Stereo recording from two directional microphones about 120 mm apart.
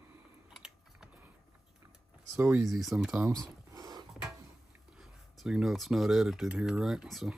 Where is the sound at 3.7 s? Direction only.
25° right (ahead or behind).